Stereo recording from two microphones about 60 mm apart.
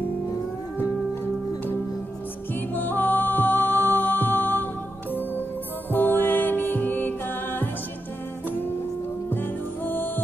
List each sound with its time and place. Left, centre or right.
2.7 s music: left
5.9 s music: left
9.3 s music: left